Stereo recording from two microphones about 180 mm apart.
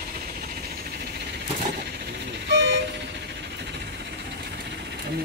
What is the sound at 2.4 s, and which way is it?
Vehicle, 75° right (ahead or behind).